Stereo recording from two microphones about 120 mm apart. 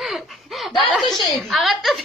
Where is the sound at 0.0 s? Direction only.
Centre (ahead or behind).